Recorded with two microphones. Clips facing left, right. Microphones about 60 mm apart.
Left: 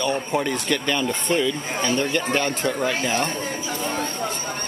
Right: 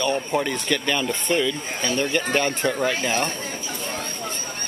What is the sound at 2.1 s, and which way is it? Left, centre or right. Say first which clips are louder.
Speech: even; centre.